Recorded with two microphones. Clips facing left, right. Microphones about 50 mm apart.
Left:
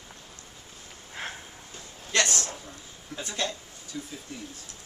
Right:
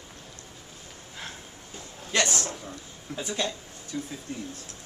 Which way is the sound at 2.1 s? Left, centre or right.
Centre.